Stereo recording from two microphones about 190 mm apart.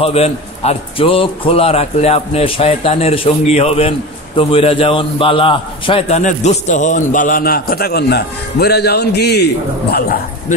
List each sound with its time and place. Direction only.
0.0 s a man's voice: 30° left (ahead or behind); by 10.0 s 60° left (ahead or behind)